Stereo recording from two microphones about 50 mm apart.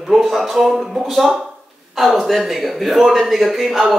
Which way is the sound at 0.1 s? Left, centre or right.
Centre.